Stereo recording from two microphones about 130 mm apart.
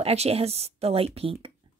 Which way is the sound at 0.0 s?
50° right (ahead or behind).